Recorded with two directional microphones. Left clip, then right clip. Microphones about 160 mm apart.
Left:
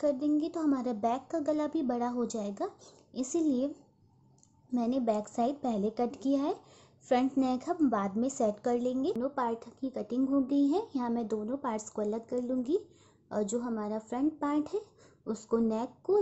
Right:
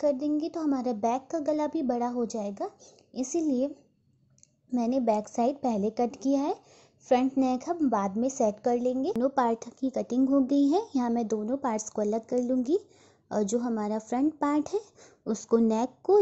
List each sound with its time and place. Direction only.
0.0 s a woman's voice: 20° right (ahead or behind)
4.7 s a woman's voice: 20° right (ahead or behind)
9.2 s speech: 40° right (ahead or behind)